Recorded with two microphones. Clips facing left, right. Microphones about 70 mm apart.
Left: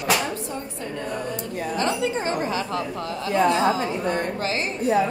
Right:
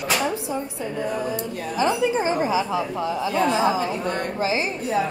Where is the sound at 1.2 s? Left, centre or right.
Centre.